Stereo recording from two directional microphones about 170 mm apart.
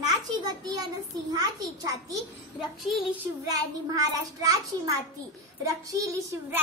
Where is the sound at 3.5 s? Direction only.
20° right (ahead or behind).